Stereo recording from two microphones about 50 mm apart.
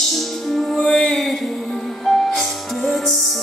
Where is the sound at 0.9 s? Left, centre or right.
Centre.